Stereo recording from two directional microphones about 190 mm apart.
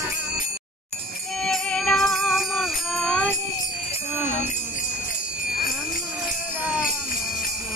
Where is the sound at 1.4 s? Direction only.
5° left (ahead or behind).